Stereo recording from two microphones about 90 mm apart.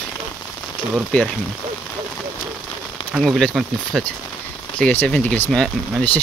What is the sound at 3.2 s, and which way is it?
Speech, 5° left (ahead or behind).